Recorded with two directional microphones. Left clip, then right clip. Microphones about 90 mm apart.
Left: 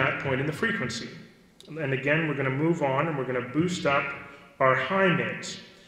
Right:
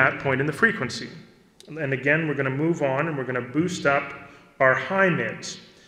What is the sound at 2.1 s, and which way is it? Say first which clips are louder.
A man's voice: right 4 dB; 35° right (ahead or behind).